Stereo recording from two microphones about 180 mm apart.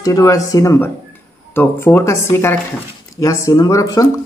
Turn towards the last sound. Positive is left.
turn(degrees=20)  # may be behind; listen again after turning